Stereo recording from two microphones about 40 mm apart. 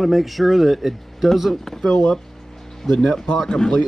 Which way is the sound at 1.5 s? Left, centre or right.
Centre.